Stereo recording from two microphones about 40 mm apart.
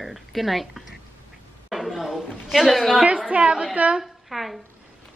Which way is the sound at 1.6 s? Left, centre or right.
Centre.